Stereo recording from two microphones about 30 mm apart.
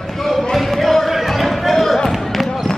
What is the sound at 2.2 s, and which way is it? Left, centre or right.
Basketball bounce, centre.